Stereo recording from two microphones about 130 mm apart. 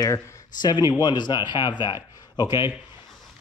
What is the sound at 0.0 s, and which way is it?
Speech, 30° left (ahead or behind).